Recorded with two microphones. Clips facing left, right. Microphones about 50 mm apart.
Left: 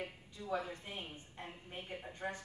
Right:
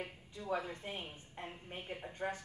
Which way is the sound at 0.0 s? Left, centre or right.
Right.